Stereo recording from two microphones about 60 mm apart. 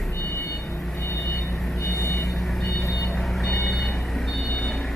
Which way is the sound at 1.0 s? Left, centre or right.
Left.